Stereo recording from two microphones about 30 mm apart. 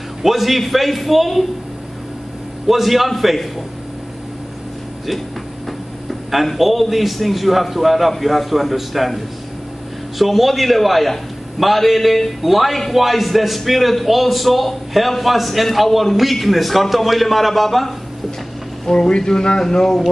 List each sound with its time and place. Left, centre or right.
0.2 s a man's voice: centre
2.6 s a man's voice: centre
5.7 s a man's voice: centre
18.9 s speech: left